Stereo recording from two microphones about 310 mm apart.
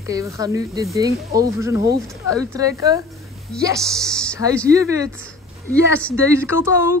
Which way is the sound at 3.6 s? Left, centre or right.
Centre.